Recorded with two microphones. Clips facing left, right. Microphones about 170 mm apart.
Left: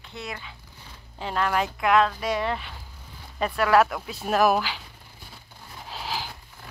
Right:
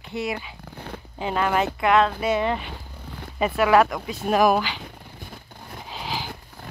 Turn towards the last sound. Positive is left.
turn(degrees=0)  # may be behind; listen again after turning